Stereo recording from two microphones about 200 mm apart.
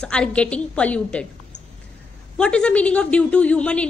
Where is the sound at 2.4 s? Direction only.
5° left (ahead or behind).